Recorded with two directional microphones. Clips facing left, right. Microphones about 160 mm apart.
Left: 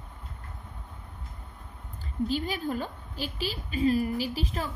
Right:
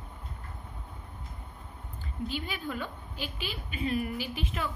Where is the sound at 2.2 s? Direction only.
40° left (ahead or behind).